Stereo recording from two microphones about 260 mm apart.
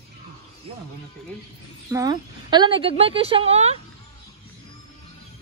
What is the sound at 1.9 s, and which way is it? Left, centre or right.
A woman's voice, centre.